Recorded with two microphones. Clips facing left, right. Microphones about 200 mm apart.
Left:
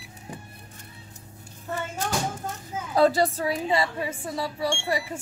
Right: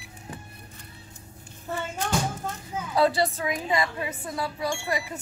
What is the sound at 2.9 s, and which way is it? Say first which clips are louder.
A woman's voice: left 2 dB; 40° left (ahead or behind).